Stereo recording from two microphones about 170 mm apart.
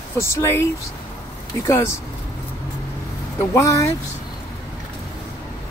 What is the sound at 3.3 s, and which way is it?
Speech, 20° left (ahead or behind).